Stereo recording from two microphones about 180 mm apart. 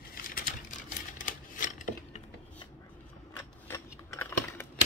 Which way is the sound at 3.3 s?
15° left (ahead or behind).